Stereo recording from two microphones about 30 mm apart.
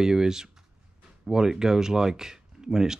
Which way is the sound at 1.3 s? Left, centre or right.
Centre.